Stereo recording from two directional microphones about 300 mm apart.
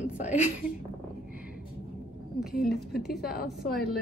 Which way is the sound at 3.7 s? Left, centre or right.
Centre.